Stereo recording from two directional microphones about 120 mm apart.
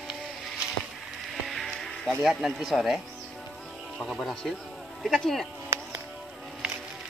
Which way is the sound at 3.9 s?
5° left (ahead or behind).